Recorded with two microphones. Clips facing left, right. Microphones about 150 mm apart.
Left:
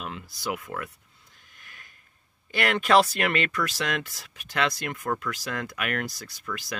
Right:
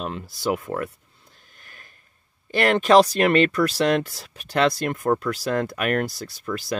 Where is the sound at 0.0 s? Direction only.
35° right (ahead or behind).